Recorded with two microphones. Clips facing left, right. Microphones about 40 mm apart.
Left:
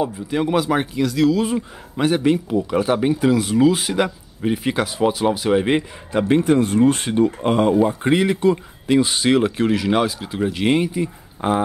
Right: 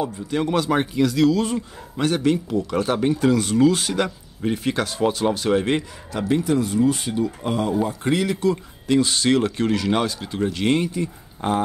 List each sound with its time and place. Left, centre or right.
0.0 s speech: centre
6.2 s speech: left
7.8 s speech: left